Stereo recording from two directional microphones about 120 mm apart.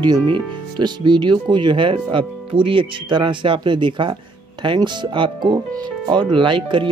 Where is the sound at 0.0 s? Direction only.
40° right (ahead or behind).